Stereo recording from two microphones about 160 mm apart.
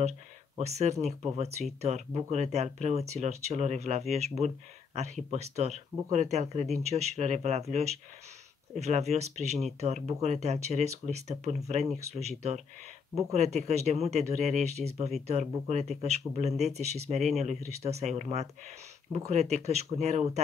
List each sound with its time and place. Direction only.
0.6 s speech: 45° right (ahead or behind)